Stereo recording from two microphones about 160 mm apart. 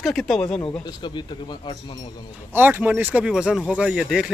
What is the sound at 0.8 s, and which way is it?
Speech, 25° left (ahead or behind).